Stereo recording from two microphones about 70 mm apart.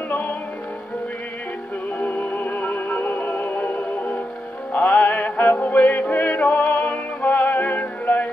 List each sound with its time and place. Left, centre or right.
0.1 s music: left
2.0 s music: left